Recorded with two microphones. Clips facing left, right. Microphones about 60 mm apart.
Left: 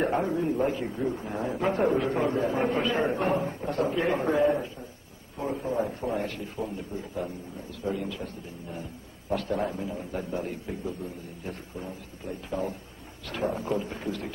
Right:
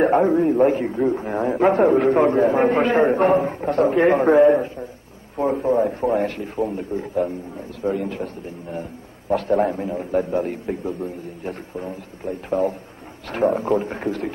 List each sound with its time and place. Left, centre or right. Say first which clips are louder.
0.0 s a man's voice: right 10 dB; right
9.3 s a man's voice: right 10 dB; right